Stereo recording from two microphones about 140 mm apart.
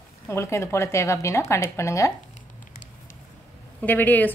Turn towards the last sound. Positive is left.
turn(degrees=15)  # may be behind; listen again after turning